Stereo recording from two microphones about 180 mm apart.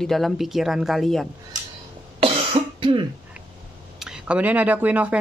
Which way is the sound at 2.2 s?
35° right (ahead or behind).